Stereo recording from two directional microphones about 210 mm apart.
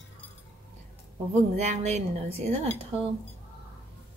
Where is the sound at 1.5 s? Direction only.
30° right (ahead or behind).